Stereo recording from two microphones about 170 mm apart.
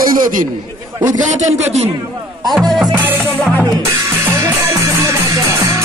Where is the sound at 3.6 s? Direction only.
15° right (ahead or behind).